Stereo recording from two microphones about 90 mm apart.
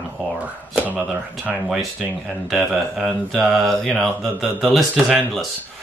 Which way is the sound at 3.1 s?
5° right (ahead or behind).